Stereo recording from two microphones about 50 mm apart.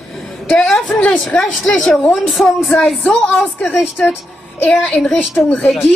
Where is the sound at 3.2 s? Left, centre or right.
Left.